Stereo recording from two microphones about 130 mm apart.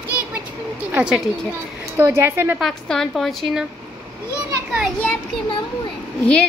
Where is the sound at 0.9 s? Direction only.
10° right (ahead or behind).